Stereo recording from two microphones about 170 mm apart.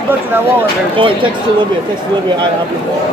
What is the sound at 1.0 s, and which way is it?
Speech, 30° right (ahead or behind).